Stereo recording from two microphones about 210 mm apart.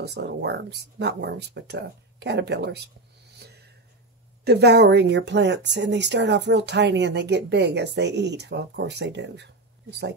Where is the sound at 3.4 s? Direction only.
50° right (ahead or behind).